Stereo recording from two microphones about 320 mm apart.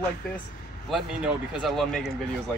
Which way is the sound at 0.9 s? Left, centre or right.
Centre.